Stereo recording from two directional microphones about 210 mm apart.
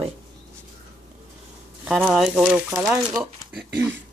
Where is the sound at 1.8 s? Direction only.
Centre (ahead or behind).